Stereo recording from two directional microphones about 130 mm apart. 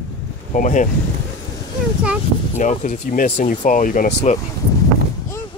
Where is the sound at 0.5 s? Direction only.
80° left.